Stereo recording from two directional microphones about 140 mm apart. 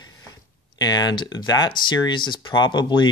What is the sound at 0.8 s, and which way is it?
Speech, 30° left (ahead or behind).